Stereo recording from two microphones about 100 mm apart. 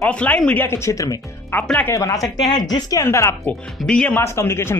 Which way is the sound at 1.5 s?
15° left (ahead or behind).